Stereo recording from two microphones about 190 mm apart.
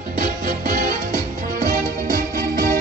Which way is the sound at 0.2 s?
45° right (ahead or behind).